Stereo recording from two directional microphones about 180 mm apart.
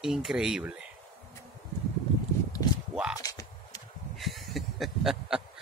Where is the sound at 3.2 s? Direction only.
20° left (ahead or behind).